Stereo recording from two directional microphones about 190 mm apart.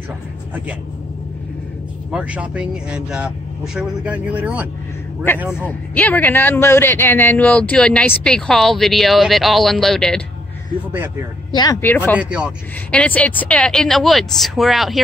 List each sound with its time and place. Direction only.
2.0 s speech: 5° right (ahead or behind)
5.6 s a man's voice: 10° left (ahead or behind)
11.5 s speech: 20° left (ahead or behind)
12.2 s speech: 5° right (ahead or behind)
12.9 s a man's voice: 5° left (ahead or behind)